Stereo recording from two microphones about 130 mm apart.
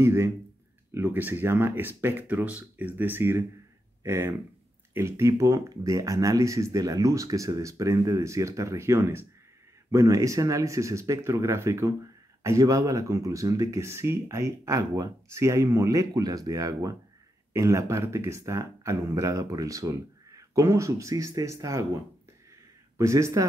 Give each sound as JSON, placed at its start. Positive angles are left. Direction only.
{"t": 0.0, "sound": "speech", "side_deg": -20}
{"t": 22.9, "sound": "speech", "side_deg": -20}